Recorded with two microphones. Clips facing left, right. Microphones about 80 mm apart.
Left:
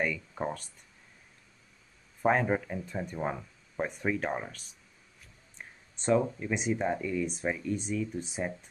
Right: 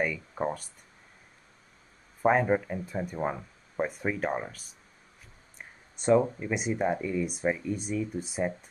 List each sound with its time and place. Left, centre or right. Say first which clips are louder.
0.0 s speech: right 2 dB; centre
2.2 s speech: right 3 dB; centre
5.6 s speech: right 1 dB; centre